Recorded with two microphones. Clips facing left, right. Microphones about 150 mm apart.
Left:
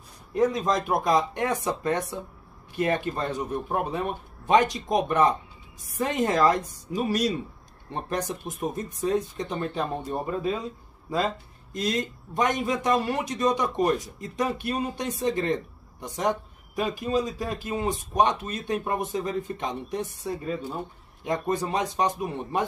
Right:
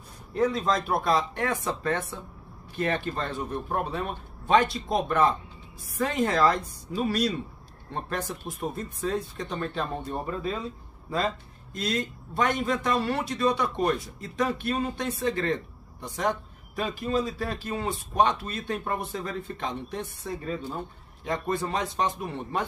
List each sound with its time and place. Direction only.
0.3 s a man's voice: 15° left (ahead or behind)
12.4 s a man's voice: 15° left (ahead or behind)